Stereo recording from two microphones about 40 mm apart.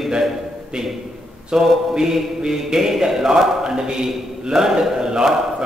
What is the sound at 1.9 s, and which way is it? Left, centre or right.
A man's voice, centre.